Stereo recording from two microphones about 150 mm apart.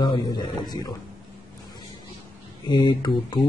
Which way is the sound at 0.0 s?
30° left (ahead or behind).